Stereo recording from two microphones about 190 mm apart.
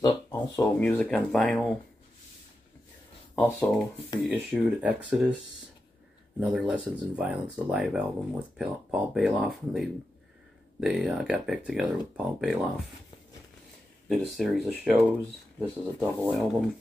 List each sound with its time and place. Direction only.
0.0 s speech: 20° left (ahead or behind)
0.7 s speech: 5° left (ahead or behind)
4.3 s speech: 5° right (ahead or behind)
6.4 s speech: 5° right (ahead or behind)
14.0 s speech: centre (ahead or behind)